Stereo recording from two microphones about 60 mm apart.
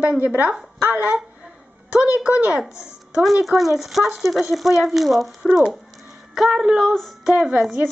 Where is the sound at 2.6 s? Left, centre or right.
Centre.